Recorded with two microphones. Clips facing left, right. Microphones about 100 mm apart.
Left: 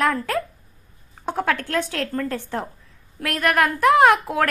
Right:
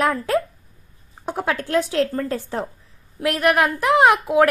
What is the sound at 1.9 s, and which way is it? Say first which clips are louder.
A woman's voice: right 4 dB; 25° right (ahead or behind).